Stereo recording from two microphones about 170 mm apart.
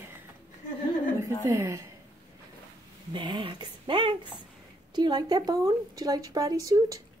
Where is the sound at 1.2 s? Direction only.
15° right (ahead or behind).